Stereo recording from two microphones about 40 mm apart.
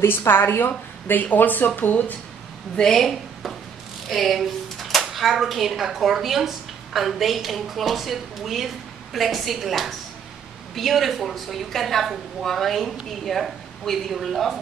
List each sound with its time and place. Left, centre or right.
0.0 s a woman's voice: left
1.0 s speech: left
2.8 s speech: centre
4.1 s a sound: centre
5.1 s a woman's voice: centre